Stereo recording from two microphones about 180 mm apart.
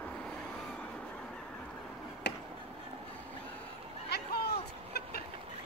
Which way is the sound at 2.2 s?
70° left (ahead or behind).